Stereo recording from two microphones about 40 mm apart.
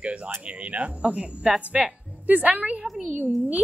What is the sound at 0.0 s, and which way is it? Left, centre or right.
A woman's voice, right.